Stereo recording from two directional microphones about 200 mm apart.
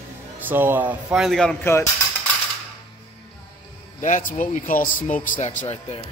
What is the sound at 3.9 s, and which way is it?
Speech, 40° left (ahead or behind).